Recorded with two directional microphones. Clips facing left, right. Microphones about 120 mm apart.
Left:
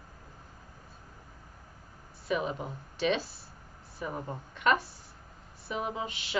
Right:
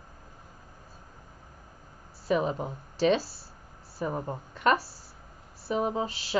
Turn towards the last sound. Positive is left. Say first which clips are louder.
# right 5 dB
turn(degrees=-35)  # may be behind; listen again after turning